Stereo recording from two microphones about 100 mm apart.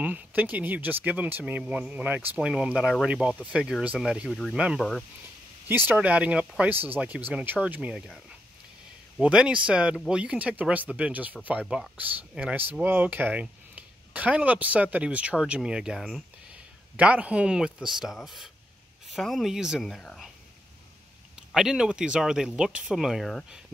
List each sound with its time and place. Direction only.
0.0 s speech: 15° right (ahead or behind)
4.3 s speech: 5° left (ahead or behind)
4.6 s speech: 10° right (ahead or behind)
9.2 s speech: 10° right (ahead or behind); by 20.2 s 5° left (ahead or behind)
21.5 s speech: 5° right (ahead or behind)